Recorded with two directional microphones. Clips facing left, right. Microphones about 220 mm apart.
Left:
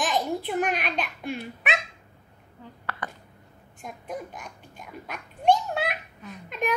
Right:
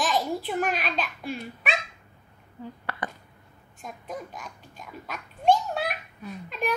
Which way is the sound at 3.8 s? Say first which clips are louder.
Left 1 dB; centre (ahead or behind).